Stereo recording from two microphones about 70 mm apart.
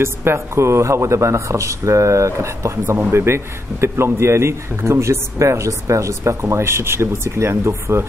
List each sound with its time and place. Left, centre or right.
0.0 s a man's voice: right